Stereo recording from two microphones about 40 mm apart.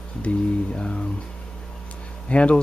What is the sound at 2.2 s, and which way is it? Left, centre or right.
Speech, left.